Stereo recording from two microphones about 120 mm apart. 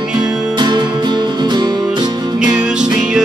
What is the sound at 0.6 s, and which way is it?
Music, 40° right (ahead or behind).